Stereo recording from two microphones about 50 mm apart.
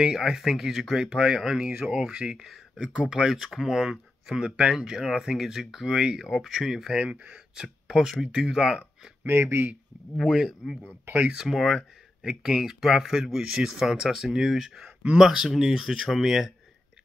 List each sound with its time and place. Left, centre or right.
0.0 s speech: centre
2.1 s speech: centre
2.4 s speech: centre
7.1 s speech: right
7.3 s speech: centre
9.2 s speech: right
10.1 s speech: centre
11.4 s speech: centre